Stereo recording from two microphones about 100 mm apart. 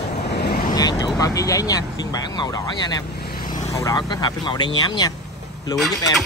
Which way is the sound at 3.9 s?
45° left (ahead or behind).